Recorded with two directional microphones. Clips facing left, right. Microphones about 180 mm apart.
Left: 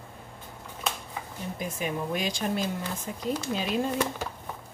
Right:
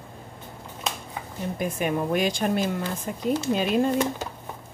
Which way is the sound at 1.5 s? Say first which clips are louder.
Right 6 dB; 60° right (ahead or behind).